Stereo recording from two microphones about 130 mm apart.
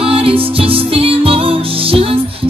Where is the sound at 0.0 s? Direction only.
45° right (ahead or behind).